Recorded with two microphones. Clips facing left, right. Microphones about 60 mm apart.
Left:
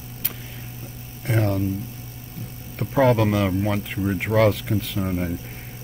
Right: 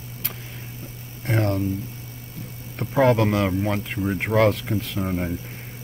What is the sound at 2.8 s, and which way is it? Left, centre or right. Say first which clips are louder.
Speech: even; centre.